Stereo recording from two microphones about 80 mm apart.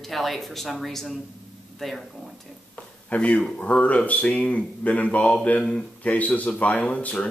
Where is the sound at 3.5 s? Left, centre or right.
Centre.